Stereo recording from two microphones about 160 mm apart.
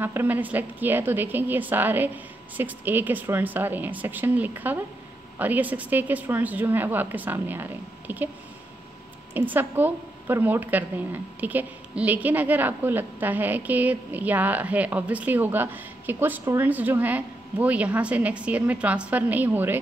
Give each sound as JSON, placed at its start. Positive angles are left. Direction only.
{"t": 0.0, "sound": "a woman's voice", "side_deg": -10}
{"t": 9.3, "sound": "a woman's voice", "side_deg": -10}